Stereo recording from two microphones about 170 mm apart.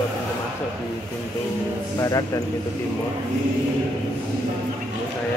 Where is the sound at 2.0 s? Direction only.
20° left (ahead or behind).